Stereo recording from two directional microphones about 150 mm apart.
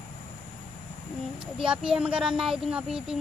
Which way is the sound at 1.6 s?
5° right (ahead or behind).